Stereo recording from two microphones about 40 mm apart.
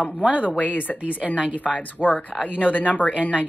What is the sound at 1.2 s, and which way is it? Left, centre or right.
Speech, right.